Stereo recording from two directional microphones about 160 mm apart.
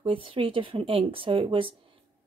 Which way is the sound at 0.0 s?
35° right (ahead or behind).